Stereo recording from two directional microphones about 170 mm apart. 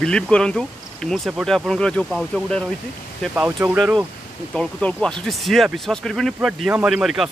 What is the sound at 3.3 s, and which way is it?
Speech, 10° right (ahead or behind).